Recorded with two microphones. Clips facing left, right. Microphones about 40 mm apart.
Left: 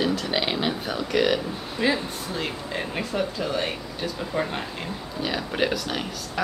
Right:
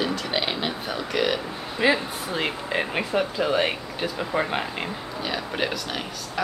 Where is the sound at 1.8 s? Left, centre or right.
Centre.